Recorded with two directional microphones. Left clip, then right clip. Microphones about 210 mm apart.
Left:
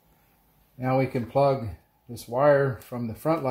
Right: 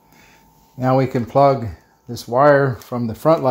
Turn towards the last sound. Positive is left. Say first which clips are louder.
# right 11 dB
turn(degrees=-30)  # may be behind; listen again after turning